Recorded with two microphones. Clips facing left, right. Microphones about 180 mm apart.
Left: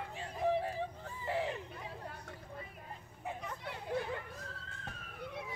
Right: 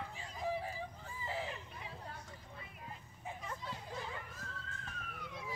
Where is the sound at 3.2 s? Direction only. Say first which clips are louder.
Left 3 dB; 65° left (ahead or behind).